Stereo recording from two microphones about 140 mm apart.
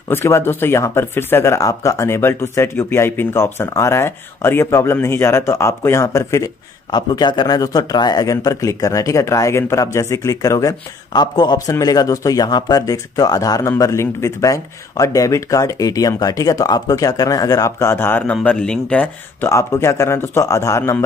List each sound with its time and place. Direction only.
0.1 s speech: 15° left (ahead or behind)
19.5 s speech: 20° left (ahead or behind)